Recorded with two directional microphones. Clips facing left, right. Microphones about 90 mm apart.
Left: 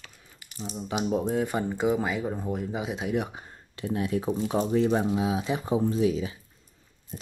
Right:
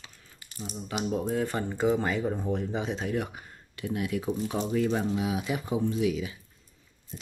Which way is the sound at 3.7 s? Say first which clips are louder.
Left 3 dB; 30° left (ahead or behind).